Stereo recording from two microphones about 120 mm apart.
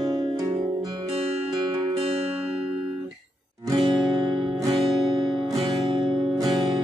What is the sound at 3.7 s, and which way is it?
Music, 40° right (ahead or behind).